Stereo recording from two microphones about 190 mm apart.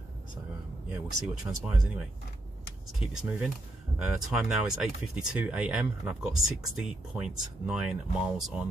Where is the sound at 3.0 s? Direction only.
10° right (ahead or behind).